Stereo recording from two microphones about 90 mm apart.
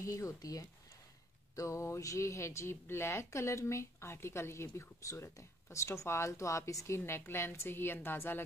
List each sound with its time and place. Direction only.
0.0 s speech: 35° left (ahead or behind)